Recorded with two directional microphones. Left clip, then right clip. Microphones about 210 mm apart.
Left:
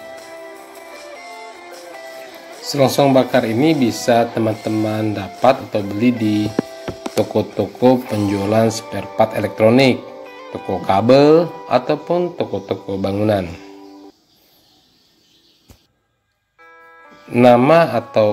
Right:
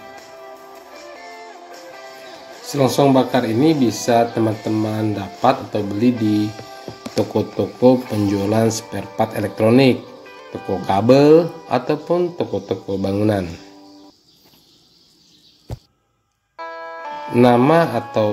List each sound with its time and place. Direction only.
0.9 s music: 5° left (ahead or behind)
2.6 s speech: 15° left (ahead or behind)
17.3 s speech: 5° left (ahead or behind)